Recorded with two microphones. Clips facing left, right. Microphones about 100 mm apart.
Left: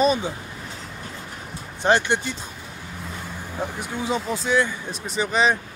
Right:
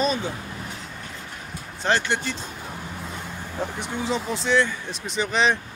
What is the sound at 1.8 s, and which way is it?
Speech, 15° left (ahead or behind).